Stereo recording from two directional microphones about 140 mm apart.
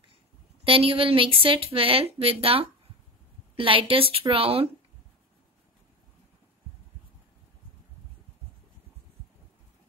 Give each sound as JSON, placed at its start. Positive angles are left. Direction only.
{"t": 0.7, "sound": "a woman's voice", "side_deg": -40}